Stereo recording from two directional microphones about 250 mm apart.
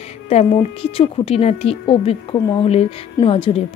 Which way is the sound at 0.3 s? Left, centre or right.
Left.